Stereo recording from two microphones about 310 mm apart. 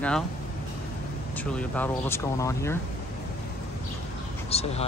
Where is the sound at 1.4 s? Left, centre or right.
Centre.